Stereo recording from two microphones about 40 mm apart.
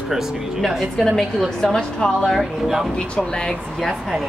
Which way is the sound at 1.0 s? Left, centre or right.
Centre.